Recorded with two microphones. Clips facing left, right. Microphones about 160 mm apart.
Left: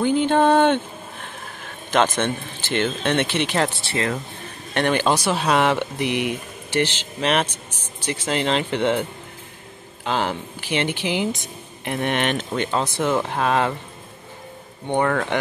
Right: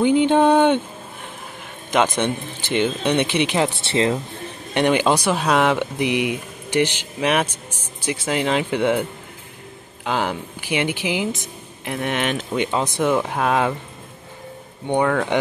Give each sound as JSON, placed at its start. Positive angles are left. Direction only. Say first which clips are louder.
{"t": 0.0, "sound": "speech", "louder": "right 2 dB", "side_deg": -15}
{"t": 1.9, "sound": "speech", "louder": "right 1 dB", "side_deg": -15}
{"t": 3.8, "sound": "speech", "louder": "right 5 dB", "side_deg": -25}
{"t": 10.0, "sound": "speech", "louder": "right 1 dB", "side_deg": -10}
{"t": 14.9, "sound": "speech", "louder": "right 2 dB", "side_deg": -5}